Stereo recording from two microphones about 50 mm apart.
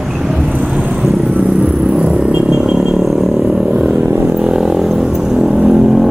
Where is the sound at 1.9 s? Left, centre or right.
Right.